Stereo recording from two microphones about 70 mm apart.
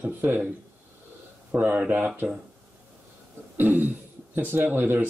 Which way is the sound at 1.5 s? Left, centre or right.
Right.